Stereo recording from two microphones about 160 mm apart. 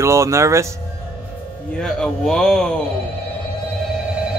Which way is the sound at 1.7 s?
5° left (ahead or behind).